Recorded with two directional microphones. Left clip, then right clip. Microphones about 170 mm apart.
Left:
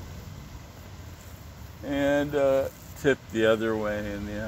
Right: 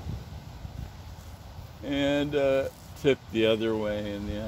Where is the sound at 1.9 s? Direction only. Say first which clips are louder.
Left 2 dB; 15° right (ahead or behind).